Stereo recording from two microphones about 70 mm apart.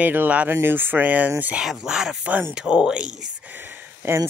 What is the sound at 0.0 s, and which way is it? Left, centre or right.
Speech, right.